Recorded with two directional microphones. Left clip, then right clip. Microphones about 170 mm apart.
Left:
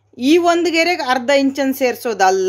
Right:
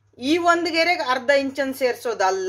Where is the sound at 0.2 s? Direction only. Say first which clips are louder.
Left 5 dB; 45° left (ahead or behind).